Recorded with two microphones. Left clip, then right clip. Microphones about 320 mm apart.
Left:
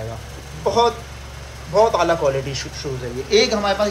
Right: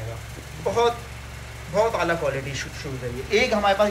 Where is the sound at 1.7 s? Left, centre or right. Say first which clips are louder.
Left 6 dB; centre.